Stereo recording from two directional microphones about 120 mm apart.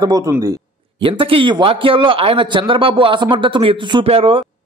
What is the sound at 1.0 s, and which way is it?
A man's voice, 45° right (ahead or behind).